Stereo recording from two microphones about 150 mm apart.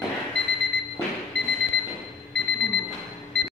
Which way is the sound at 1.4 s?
90° right.